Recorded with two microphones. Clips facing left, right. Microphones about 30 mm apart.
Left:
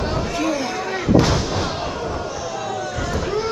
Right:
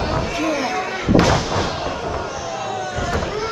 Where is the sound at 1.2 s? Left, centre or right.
Centre.